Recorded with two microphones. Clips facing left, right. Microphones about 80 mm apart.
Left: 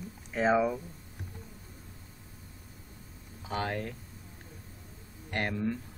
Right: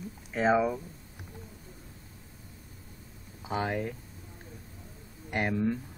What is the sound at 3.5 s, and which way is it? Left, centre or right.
Speech, centre.